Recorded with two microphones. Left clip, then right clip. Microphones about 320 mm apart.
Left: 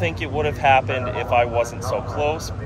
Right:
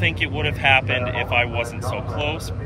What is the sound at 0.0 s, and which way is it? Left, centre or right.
Speech, centre.